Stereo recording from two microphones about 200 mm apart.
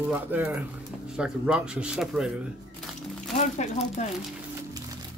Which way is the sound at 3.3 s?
35° left (ahead or behind).